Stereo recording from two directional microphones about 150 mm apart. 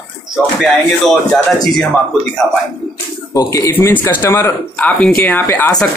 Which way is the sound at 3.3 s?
20° left (ahead or behind).